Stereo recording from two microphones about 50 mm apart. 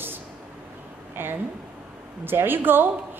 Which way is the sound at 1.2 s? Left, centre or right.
Right.